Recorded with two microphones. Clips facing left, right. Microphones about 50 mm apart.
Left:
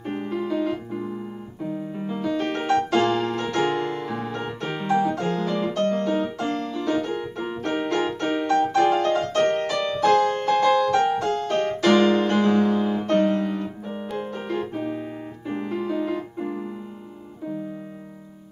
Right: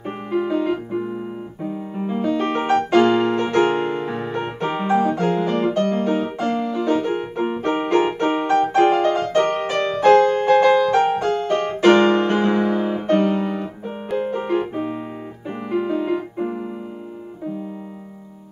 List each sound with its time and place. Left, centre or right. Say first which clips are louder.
0.0 s music: right 4 dB; right
5.9 s piano: right 2 dB; right
8.7 s music: right 5 dB; right
10.0 s music: right 6 dB; right; by 15.0 s centre
15.5 s keyboard: right 4 dB; right